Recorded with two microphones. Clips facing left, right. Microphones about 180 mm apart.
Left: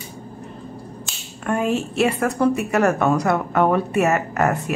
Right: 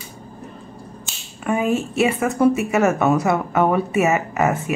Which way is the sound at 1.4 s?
5° right (ahead or behind).